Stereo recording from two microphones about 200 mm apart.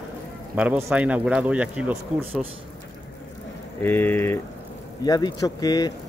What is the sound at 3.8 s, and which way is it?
Speech, 10° left (ahead or behind).